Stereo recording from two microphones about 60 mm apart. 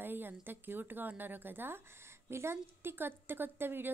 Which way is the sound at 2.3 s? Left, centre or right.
Right.